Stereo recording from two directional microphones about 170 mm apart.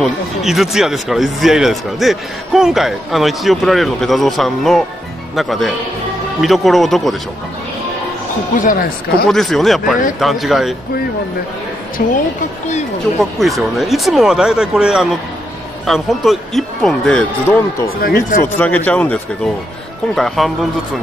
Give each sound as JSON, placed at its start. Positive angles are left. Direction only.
{"t": 0.0, "sound": "speech", "side_deg": 0}
{"t": 8.5, "sound": "speech", "side_deg": 55}
{"t": 9.3, "sound": "speech", "side_deg": 0}
{"t": 12.0, "sound": "speech", "side_deg": 55}
{"t": 13.2, "sound": "speech", "side_deg": 0}
{"t": 17.8, "sound": "speech", "side_deg": 60}
{"t": 18.9, "sound": "speech", "side_deg": 10}